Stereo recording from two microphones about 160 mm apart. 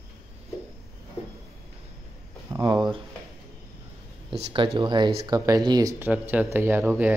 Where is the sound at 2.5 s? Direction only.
20° right (ahead or behind).